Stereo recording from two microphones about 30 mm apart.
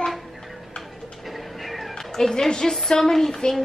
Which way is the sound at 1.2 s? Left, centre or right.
Centre.